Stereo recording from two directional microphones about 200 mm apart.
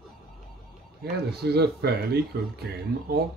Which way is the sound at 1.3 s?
55° right (ahead or behind).